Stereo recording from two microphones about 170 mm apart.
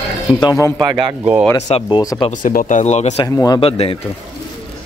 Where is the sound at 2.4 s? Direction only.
55° left (ahead or behind).